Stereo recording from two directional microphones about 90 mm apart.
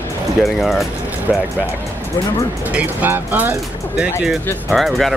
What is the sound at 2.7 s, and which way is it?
Speech, 20° right (ahead or behind).